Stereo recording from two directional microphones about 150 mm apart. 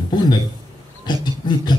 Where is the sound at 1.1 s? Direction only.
30° left (ahead or behind).